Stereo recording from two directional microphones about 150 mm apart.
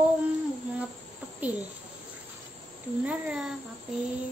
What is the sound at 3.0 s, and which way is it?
Speech, 5° right (ahead or behind).